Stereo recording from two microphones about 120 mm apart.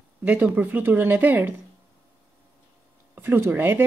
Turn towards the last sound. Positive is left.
turn(degrees=-20)  # may be behind; listen again after turning